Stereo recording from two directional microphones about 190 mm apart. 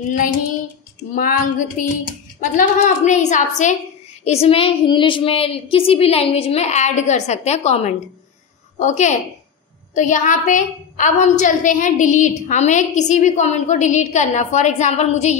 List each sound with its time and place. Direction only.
1.1 s a woman's voice: 45° left (ahead or behind)